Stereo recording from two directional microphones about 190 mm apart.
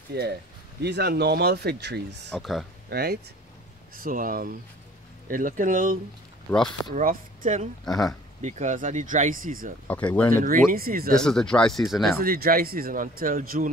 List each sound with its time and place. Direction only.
0.1 s speech: 55° right (ahead or behind)
2.3 s speech: centre (ahead or behind)
2.9 s speech: 55° right (ahead or behind)
7.8 s speech: centre (ahead or behind)
8.4 s speech: 40° right (ahead or behind)
9.8 s speech: 5° left (ahead or behind)
10.3 s speech: 45° right (ahead or behind)
11.1 s speech: 5° left (ahead or behind)
12.2 s speech: 50° right (ahead or behind)